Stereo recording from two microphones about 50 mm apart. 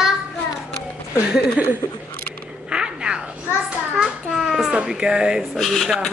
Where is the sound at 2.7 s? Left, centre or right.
Centre.